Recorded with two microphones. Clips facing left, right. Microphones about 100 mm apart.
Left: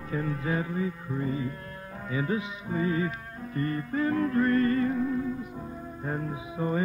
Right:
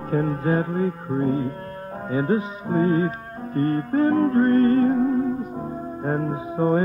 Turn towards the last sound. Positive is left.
turn(degrees=-45)  # may be behind; listen again after turning